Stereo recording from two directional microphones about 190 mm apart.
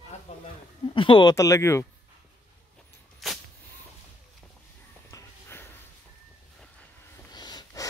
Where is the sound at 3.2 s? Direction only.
Centre (ahead or behind).